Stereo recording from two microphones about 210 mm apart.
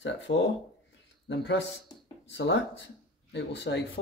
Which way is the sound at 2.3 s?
60° left (ahead or behind).